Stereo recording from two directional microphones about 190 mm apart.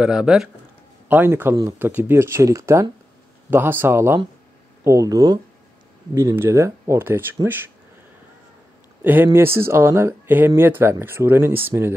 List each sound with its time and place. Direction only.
0.0 s speech: 5° right (ahead or behind)
9.0 s speech: 10° right (ahead or behind)